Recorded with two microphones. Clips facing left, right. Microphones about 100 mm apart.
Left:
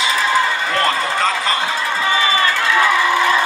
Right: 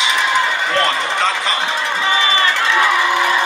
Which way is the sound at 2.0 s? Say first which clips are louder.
Even; 20° right (ahead or behind).